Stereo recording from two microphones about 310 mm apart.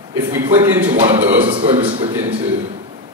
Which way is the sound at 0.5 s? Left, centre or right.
Centre.